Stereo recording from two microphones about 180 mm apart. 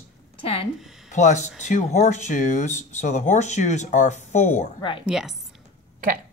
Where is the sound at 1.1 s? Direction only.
45° left (ahead or behind).